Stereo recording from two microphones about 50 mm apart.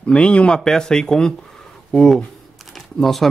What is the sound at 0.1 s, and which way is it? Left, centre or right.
Speech, left.